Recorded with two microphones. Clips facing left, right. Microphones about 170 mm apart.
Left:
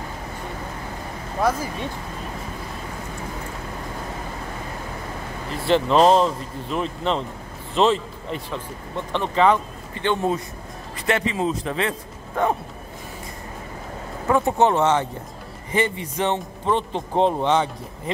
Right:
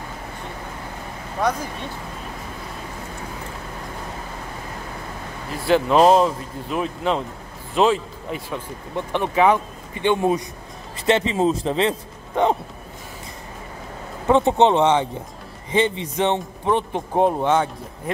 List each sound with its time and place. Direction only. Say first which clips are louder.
1.5 s speech: left 1 dB; 5° left (ahead or behind)
5.7 s a man's voice: right 1 dB; 5° right (ahead or behind)
11.1 s speech: right 4 dB; 30° right (ahead or behind)
14.2 s a man's voice: right 3 dB; 20° right (ahead or behind); by 18.1 s centre (ahead or behind)